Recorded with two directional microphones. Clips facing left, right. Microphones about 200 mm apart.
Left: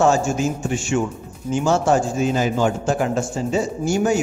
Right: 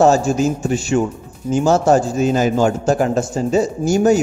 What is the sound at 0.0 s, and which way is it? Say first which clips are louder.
A man's voice: right 4 dB; 35° right (ahead or behind).